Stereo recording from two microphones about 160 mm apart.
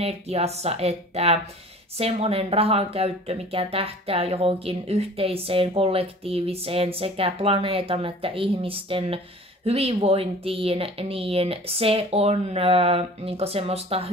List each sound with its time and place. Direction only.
0.0 s speech: 40° right (ahead or behind)